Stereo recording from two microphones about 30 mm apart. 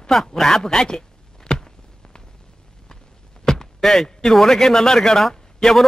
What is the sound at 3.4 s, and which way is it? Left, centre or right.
Speech, centre.